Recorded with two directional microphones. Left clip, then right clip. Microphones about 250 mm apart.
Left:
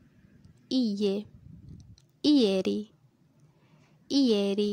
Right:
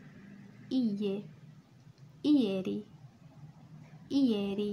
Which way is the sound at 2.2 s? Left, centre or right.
Left.